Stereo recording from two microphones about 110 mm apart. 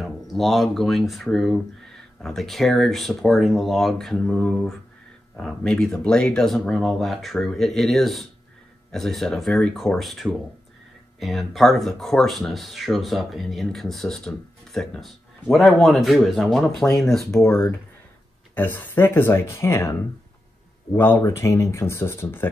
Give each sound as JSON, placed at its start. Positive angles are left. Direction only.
{"t": 0.0, "sound": "speech", "side_deg": 0}
{"t": 17.5, "sound": "speech", "side_deg": 25}